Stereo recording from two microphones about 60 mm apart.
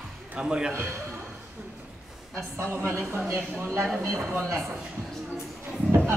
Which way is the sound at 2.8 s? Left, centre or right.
Right.